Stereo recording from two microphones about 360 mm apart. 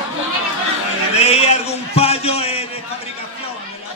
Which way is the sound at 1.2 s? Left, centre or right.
Centre.